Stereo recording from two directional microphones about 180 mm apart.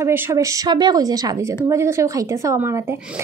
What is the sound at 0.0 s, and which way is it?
A woman's voice, 15° right (ahead or behind).